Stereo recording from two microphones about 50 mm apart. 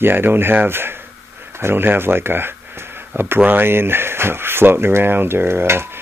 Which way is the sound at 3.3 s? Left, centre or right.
Right.